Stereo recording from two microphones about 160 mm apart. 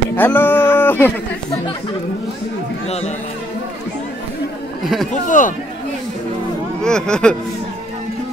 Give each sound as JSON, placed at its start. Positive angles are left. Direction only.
{"t": 0.1, "sound": "speech", "side_deg": 10}
{"t": 5.1, "sound": "a man's voice", "side_deg": 55}
{"t": 6.8, "sound": "speech", "side_deg": 5}